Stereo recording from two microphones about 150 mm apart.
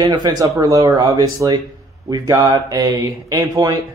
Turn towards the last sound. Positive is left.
turn(degrees=-25)  # may be behind; listen again after turning